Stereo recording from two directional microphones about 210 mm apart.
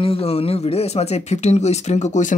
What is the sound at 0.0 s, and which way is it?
Speech, 25° left (ahead or behind).